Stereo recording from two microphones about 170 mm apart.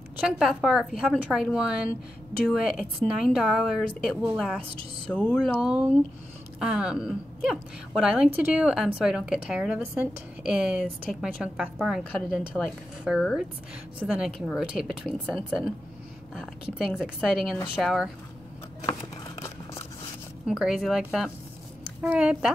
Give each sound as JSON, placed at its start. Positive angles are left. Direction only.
{"t": 0.3, "sound": "a woman's voice", "side_deg": 0}
{"t": 5.1, "sound": "speech", "side_deg": 10}
{"t": 5.6, "sound": "a woman's voice", "side_deg": -5}
{"t": 18.9, "sound": "a sound", "side_deg": 15}
{"t": 20.4, "sound": "a woman's voice", "side_deg": -5}